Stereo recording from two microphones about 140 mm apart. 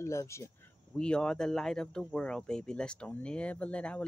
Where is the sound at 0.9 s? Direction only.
5° left (ahead or behind).